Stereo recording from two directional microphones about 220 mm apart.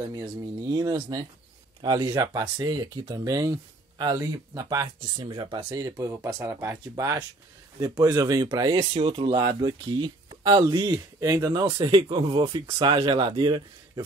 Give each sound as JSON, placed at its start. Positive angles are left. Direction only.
{"t": 0.1, "sound": "speech", "side_deg": -15}